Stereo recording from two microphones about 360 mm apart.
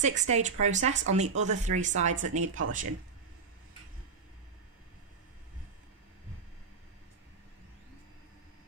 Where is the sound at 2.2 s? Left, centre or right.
Right.